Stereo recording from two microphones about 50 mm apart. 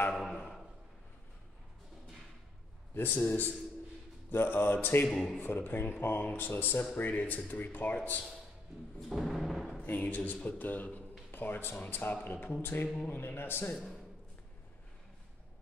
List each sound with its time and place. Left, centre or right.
0.1 s timpani: centre
2.9 s a man's voice: left
4.3 s speech: left
5.0 s a man's voice: centre
5.4 s speech: left
7.0 s speech: left
9.1 s timpani: centre
9.8 s speech: left
12.8 s a man's voice: centre
13.1 s speech: left